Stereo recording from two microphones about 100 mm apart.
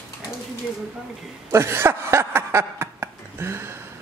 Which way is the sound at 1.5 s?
25° right (ahead or behind).